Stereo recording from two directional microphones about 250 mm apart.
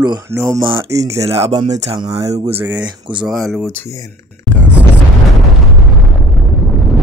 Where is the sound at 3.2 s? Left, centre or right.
Centre.